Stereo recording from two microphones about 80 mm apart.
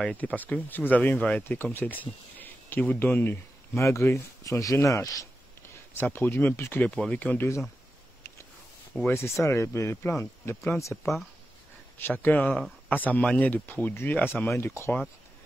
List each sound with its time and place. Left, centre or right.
0.0 s speech: centre
3.8 s speech: left
5.9 s speech: left
6.8 s speech: centre
9.1 s speech: left
12.0 s speech: left
14.5 s speech: left